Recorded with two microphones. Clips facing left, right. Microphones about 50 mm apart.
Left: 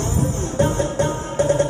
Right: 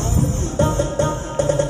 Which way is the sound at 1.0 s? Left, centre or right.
Right.